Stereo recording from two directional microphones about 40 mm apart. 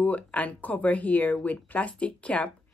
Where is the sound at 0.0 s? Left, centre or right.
Left.